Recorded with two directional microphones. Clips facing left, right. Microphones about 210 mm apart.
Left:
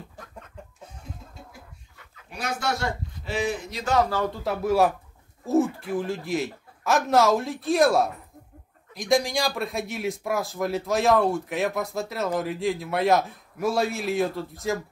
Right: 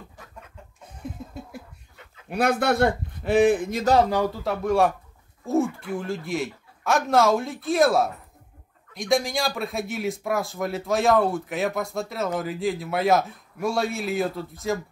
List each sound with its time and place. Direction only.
2.2 s a man's voice: 60° right (ahead or behind)
3.8 s a man's voice: 35° right (ahead or behind)
4.3 s speech: centre (ahead or behind)